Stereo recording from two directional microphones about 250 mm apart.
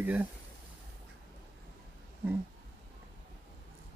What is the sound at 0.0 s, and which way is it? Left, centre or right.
Speech, centre.